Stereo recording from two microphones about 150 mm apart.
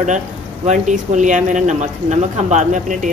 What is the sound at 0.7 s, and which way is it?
Speech, 55° right (ahead or behind).